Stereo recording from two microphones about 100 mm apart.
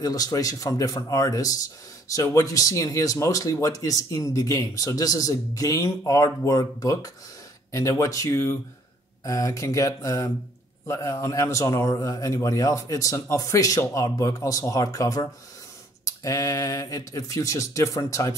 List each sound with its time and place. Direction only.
0.0 s a man's voice: 40° left (ahead or behind)